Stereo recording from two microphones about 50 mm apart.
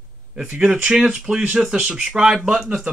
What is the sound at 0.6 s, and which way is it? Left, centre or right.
Speech, centre.